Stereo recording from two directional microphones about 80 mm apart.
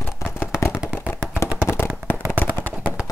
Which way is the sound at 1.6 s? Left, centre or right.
Left.